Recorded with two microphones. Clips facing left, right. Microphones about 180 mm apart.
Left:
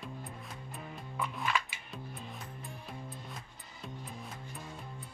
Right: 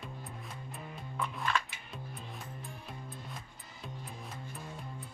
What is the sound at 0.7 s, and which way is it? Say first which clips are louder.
Music: left 1 dB; centre (ahead or behind).